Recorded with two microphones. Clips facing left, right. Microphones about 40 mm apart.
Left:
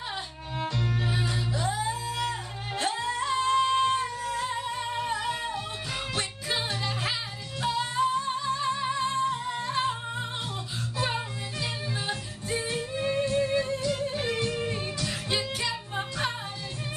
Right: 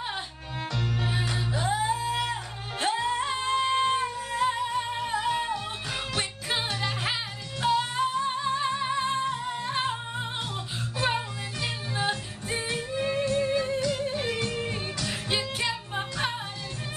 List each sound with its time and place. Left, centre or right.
1.5 s music: right
4.6 s music: centre
11.6 s music: centre
12.7 s music: centre
15.0 s music: centre